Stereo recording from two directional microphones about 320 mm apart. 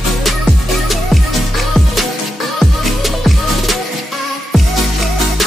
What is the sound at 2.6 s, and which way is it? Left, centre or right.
Music, centre.